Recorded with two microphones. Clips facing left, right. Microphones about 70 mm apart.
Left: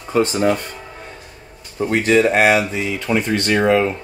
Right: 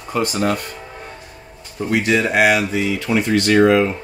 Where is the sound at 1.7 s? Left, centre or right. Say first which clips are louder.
Left 3 dB; left.